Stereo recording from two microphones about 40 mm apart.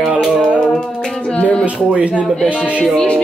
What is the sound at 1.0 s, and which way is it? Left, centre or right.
Speech, left.